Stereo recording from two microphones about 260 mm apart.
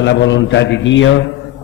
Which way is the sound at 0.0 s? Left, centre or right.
Left.